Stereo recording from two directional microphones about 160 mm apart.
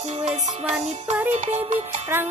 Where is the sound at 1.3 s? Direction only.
45° right (ahead or behind).